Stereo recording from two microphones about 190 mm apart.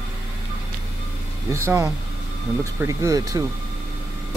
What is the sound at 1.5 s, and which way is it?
Speech, 15° right (ahead or behind).